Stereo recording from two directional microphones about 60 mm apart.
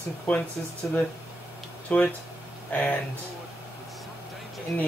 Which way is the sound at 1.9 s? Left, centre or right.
Left.